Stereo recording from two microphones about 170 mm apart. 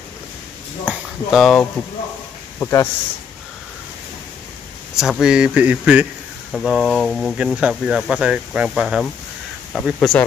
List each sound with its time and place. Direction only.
0.8 s speech: centre (ahead or behind)
2.6 s speech: 15° left (ahead or behind)
4.9 s speech: centre (ahead or behind)
6.5 s speech: centre (ahead or behind)